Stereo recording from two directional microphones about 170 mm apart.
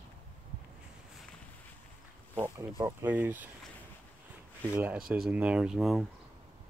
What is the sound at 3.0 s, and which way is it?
Speech, 10° right (ahead or behind).